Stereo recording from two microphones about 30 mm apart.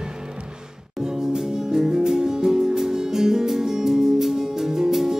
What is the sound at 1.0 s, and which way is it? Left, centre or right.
Music, right.